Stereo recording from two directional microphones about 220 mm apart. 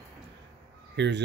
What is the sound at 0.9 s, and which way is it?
Speech, 50° right (ahead or behind).